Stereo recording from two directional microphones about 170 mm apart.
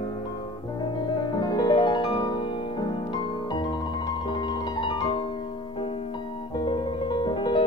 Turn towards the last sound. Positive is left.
turn(degrees=30)  # may be behind; listen again after turning